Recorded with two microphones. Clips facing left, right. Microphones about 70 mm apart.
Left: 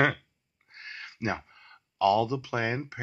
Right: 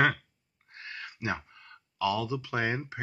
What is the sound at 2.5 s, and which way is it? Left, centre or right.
Speech, centre.